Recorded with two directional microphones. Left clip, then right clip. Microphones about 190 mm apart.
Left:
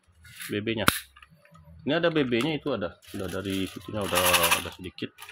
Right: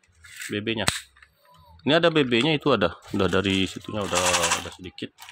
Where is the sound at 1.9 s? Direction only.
20° right (ahead or behind).